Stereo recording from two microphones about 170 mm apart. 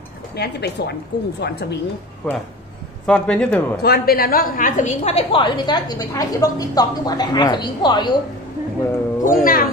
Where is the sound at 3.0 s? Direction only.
5° left (ahead or behind).